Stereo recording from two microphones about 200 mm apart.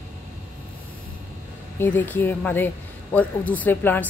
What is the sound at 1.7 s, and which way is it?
Speech, 10° left (ahead or behind).